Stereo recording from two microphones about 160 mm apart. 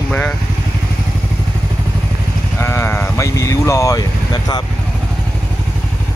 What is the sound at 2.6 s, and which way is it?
Speech, 15° left (ahead or behind).